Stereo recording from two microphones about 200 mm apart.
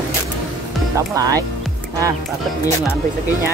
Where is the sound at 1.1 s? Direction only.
15° right (ahead or behind).